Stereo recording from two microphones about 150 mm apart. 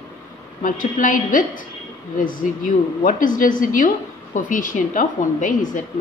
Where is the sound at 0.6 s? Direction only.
60° left (ahead or behind).